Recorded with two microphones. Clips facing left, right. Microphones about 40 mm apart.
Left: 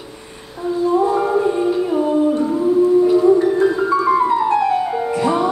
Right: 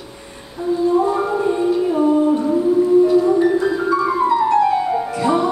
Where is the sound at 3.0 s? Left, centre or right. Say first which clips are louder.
Left 1 dB; centre.